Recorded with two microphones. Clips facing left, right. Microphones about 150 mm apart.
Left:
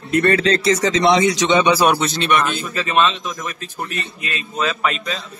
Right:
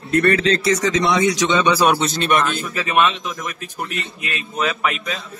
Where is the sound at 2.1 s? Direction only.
45° right (ahead or behind).